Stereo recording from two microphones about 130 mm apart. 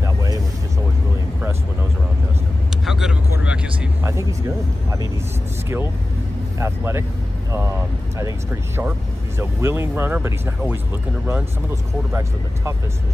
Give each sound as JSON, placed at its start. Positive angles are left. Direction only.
{"t": 0.0, "sound": "a sound", "side_deg": -25}
{"t": 2.7, "sound": "vehicle", "side_deg": -5}
{"t": 4.0, "sound": "speech", "side_deg": -25}
{"t": 6.6, "sound": "speech", "side_deg": -20}
{"t": 8.2, "sound": "speech", "side_deg": -20}